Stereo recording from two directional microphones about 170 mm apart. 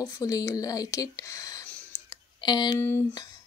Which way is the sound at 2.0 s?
25° left (ahead or behind).